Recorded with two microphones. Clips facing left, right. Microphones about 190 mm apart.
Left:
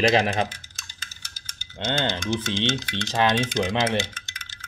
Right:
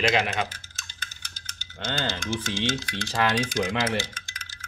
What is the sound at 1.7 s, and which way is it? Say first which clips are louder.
Speech: left 4 dB; 25° left (ahead or behind).